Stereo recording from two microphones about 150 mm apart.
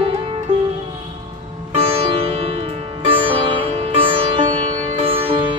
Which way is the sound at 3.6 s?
40° right (ahead or behind).